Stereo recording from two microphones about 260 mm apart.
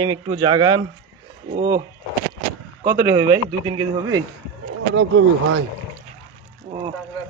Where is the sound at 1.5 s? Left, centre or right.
Right.